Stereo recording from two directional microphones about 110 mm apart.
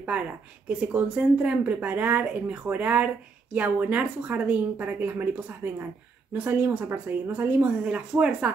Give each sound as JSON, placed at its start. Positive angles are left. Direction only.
{"t": 0.7, "sound": "speech", "side_deg": -10}